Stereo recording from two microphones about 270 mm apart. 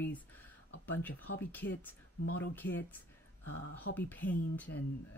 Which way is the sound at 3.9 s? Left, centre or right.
Left.